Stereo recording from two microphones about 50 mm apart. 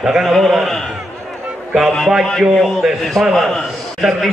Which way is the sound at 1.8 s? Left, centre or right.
Centre.